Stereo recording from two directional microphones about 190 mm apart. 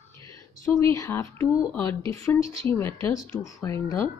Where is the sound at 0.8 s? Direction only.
15° left (ahead or behind).